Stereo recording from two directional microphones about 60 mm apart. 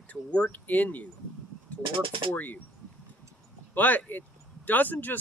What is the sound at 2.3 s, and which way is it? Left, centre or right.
Speech, left.